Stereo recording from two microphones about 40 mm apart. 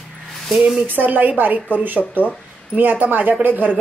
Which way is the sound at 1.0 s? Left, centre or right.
Right.